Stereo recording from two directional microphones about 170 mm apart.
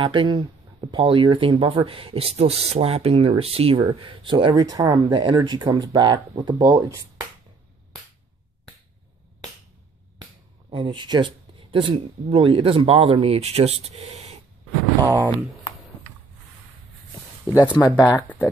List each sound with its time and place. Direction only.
0.0 s speech: 30° right (ahead or behind)
10.7 s speech: 30° right (ahead or behind)
15.0 s speech: 20° right (ahead or behind)
17.5 s speech: 20° left (ahead or behind)